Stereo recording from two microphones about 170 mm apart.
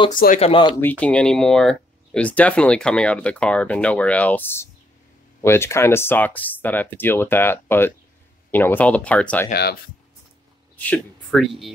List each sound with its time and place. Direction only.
0.1 s speech: 55° left (ahead or behind)
0.4 s speech: 30° left (ahead or behind)
0.7 s speech: 10° left (ahead or behind)
9.5 s speech: 65° left (ahead or behind)
10.8 s speech: 5° left (ahead or behind)